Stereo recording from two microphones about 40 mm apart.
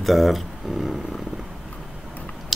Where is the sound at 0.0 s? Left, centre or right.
Centre.